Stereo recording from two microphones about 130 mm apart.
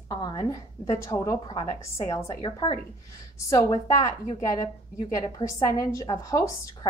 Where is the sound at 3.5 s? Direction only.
25° left (ahead or behind).